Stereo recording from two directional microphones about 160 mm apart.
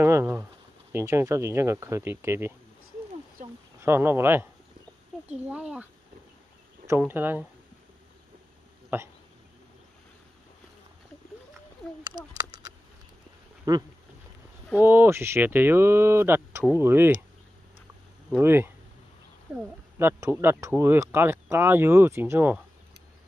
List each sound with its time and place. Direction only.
0.0 s a sound: 15° right (ahead or behind)
0.9 s speech: 15° right (ahead or behind)
3.4 s a sound: 60° right (ahead or behind)
3.8 s speech: 15° right (ahead or behind)
7.0 s speech: 10° right (ahead or behind)
8.9 s speech: 15° right (ahead or behind)
12.0 s a sound: 25° right (ahead or behind)
13.7 s speech: 25° right (ahead or behind)
18.3 s speech: 15° right (ahead or behind)